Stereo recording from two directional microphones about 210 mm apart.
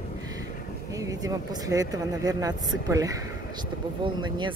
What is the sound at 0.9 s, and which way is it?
Speech, 15° right (ahead or behind).